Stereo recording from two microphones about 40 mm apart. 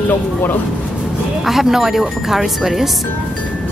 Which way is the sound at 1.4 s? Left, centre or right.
Centre.